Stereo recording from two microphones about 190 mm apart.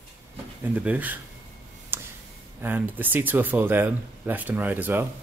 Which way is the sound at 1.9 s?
10° right (ahead or behind).